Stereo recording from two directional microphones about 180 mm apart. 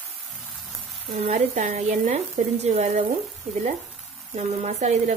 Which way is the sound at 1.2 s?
40° right (ahead or behind).